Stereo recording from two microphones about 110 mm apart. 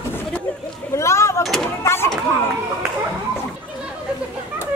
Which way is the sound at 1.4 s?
Centre (ahead or behind).